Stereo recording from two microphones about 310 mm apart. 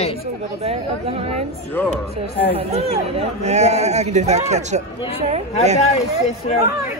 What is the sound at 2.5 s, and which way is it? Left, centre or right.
Speech, centre.